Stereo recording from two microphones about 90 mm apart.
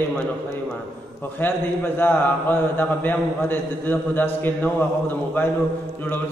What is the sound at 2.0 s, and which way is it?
A man's voice, 20° left (ahead or behind).